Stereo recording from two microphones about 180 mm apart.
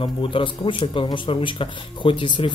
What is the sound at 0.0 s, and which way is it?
A man's voice, 30° left (ahead or behind).